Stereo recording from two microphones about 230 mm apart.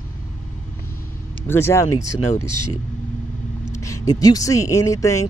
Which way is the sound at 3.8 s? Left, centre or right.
Centre.